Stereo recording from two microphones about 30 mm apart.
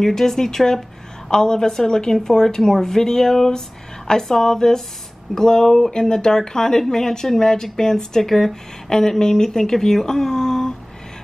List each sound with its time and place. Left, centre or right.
0.0 s speech: centre